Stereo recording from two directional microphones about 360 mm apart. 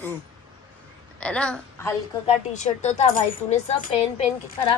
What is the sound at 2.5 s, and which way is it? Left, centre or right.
Speech, centre.